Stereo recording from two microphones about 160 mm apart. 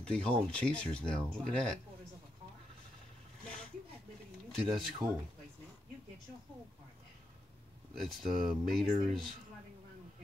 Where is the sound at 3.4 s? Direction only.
5° left (ahead or behind).